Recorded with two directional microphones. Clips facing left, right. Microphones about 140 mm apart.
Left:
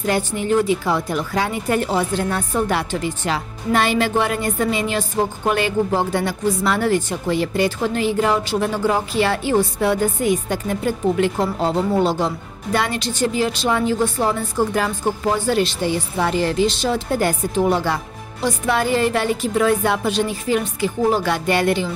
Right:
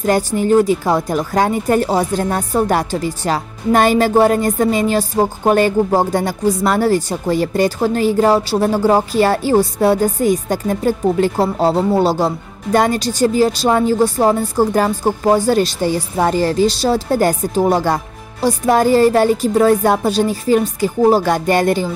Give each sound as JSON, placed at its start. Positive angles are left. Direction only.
{"t": 0.0, "sound": "speech", "side_deg": -40}